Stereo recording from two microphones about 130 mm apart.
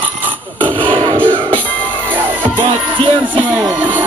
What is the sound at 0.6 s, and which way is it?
Speech, 40° right (ahead or behind).